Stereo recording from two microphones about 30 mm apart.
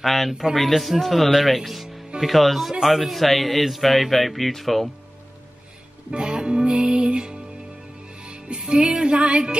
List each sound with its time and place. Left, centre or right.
0.0 s speech: centre
6.1 s music: right